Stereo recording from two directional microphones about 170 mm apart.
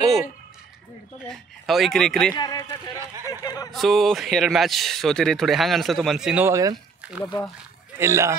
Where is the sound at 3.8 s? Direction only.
Centre (ahead or behind).